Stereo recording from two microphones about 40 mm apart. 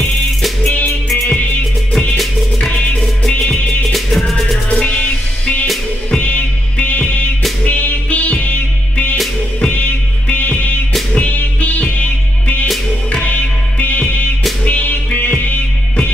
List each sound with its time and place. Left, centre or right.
0.0 s music: centre
6.2 s music: left
11.1 s music: left